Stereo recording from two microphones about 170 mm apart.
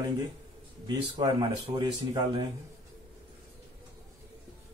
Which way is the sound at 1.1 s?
25° right (ahead or behind).